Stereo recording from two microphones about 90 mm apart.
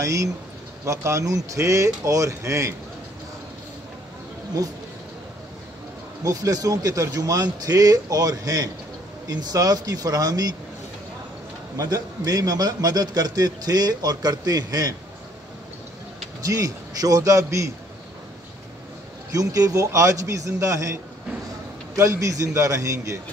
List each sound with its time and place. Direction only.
0.0 s speech: 35° right (ahead or behind)
6.2 s a man's voice: 40° right (ahead or behind)
11.7 s a man's voice: 40° right (ahead or behind)
16.4 s speech: 40° right (ahead or behind)
19.3 s speech: 40° right (ahead or behind)